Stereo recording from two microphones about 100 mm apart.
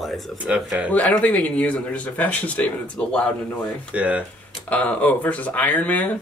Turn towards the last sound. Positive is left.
turn(degrees=15)  # may be behind; listen again after turning